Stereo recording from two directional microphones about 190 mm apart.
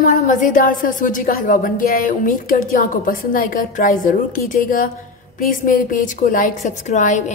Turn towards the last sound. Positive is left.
turn(degrees=40)  # may be behind; listen again after turning